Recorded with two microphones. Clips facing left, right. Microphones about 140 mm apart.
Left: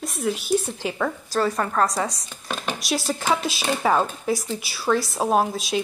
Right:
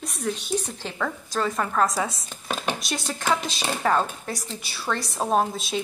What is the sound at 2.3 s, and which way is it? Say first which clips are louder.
Speech: right 1 dB; 20° right (ahead or behind).